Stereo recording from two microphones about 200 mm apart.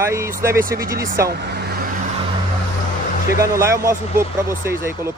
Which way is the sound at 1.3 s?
55° right (ahead or behind).